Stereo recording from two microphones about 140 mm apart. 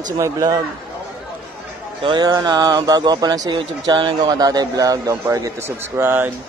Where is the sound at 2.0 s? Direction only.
30° right (ahead or behind).